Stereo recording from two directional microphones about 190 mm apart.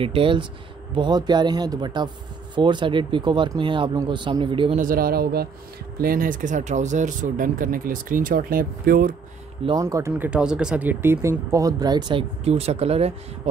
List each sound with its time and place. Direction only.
0.0 s speech: 30° right (ahead or behind)
4.7 s speech: 50° right (ahead or behind)
9.7 s speech: 15° right (ahead or behind); by 13.1 s 30° right (ahead or behind)